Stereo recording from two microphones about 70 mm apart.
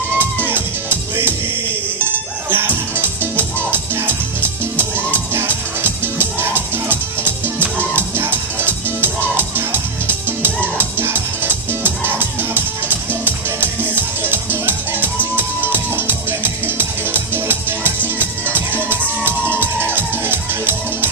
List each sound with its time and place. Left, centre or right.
0.2 s music: right
2.5 s music: right